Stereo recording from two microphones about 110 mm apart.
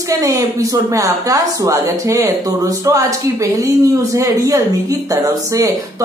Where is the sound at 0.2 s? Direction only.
30° right (ahead or behind).